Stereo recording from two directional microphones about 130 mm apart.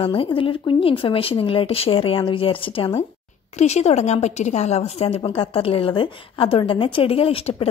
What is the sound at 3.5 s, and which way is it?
A woman's voice, 60° left (ahead or behind).